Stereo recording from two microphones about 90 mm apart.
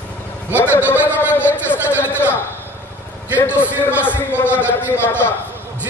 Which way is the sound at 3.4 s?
25° left (ahead or behind).